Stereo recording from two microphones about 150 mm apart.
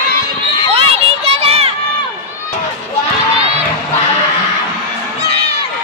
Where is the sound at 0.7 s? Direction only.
40° right (ahead or behind).